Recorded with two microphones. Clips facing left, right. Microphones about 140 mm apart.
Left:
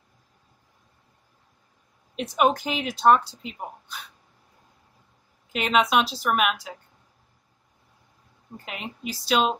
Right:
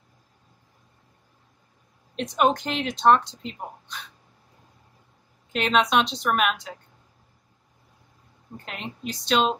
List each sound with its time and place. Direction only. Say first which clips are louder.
2.1 s speech: even; 5° left (ahead or behind)
5.5 s speech: even; 5° left (ahead or behind)
8.6 s speech: even; 5° left (ahead or behind)